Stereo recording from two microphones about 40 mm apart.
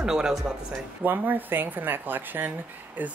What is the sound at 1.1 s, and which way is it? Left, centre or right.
Speech, right.